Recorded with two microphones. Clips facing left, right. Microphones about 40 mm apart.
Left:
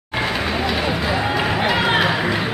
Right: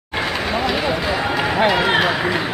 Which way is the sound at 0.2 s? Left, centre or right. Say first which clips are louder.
Right 1 dB; centre.